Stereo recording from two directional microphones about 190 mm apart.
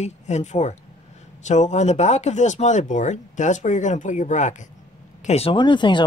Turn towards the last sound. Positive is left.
turn(degrees=25)  # may be behind; listen again after turning